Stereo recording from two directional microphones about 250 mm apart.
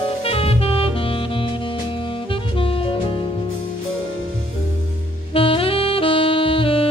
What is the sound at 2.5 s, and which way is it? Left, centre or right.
Saxophone, left.